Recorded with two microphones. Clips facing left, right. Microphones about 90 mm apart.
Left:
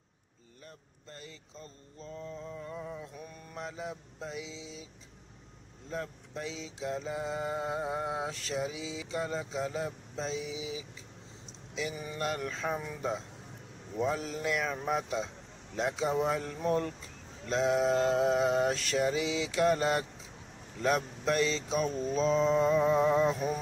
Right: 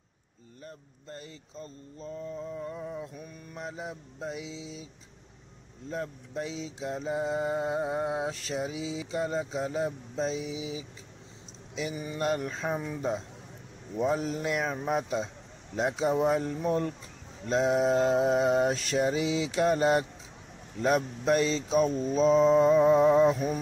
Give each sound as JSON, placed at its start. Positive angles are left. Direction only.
{"t": 1.1, "sound": "mantra", "side_deg": -30}
{"t": 2.5, "sound": "mantra", "side_deg": -15}
{"t": 5.9, "sound": "mantra", "side_deg": -30}
{"t": 11.9, "sound": "mantra", "side_deg": -10}
{"t": 12.2, "sound": "mantra", "side_deg": -25}
{"t": 22.7, "sound": "mantra", "side_deg": -25}